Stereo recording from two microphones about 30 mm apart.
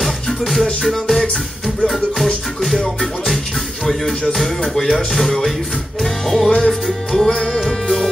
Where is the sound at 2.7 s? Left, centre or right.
Left.